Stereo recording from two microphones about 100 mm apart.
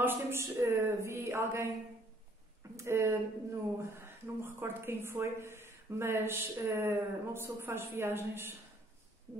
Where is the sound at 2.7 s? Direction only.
30° right (ahead or behind).